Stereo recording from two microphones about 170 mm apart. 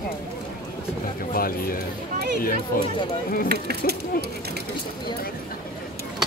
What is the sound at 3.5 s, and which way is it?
Speech, 70° right (ahead or behind).